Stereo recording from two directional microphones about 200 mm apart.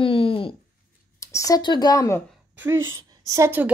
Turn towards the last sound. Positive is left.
turn(degrees=-10)  # may be behind; listen again after turning